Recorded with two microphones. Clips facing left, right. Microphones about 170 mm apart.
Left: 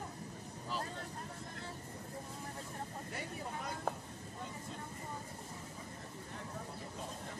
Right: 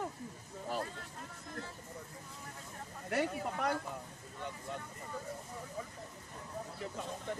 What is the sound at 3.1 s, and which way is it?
Speech, 70° right (ahead or behind).